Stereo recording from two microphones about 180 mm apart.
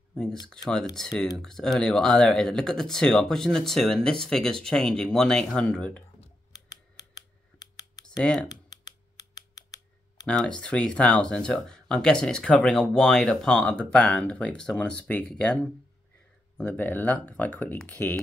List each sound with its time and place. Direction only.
0.1 s speech: 5° left (ahead or behind)
6.5 s typing: 20° left (ahead or behind)
8.0 s speech: 5° left (ahead or behind)
8.5 s a sound: 20° left (ahead or behind)
10.2 s speech: 5° left (ahead or behind)